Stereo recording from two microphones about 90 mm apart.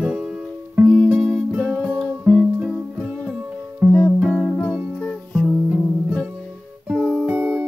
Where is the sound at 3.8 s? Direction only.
20° right (ahead or behind).